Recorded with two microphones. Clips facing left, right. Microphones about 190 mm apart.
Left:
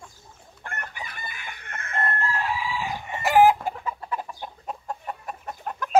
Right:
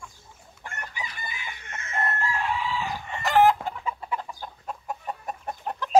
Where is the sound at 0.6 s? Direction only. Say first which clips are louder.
Left 1 dB; 55° left (ahead or behind).